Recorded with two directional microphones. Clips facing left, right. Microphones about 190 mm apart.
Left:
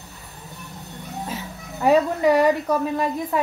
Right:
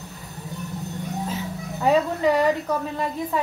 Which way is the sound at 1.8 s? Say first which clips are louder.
Left 2 dB; 10° left (ahead or behind).